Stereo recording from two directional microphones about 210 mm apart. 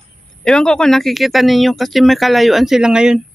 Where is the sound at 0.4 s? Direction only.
5° left (ahead or behind).